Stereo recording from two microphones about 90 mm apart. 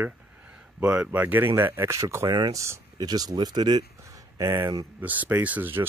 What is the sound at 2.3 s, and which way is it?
Speech, 50° right (ahead or behind).